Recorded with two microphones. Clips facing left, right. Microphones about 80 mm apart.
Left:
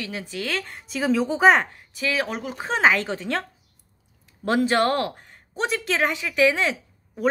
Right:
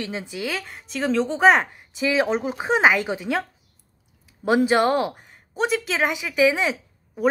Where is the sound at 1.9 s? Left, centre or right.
Right.